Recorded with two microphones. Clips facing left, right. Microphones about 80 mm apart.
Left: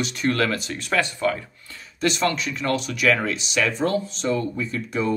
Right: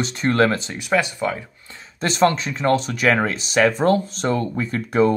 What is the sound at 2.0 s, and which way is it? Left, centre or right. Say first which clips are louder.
Speech: right 4 dB; right.